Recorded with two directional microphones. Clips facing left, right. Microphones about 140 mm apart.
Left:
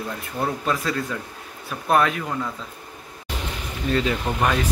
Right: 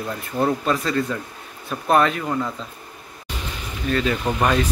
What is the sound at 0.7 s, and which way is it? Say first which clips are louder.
Speech: right 3 dB; 5° left (ahead or behind).